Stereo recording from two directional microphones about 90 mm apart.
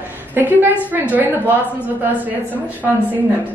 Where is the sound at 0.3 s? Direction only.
20° right (ahead or behind).